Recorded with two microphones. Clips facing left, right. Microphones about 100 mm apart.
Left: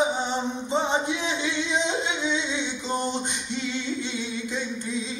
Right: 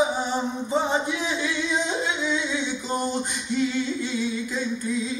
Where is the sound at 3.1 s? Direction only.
20° left (ahead or behind).